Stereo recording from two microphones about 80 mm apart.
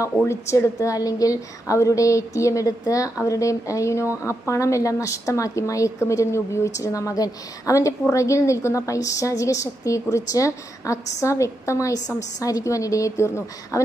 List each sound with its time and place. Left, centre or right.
0.3 s a woman's voice: left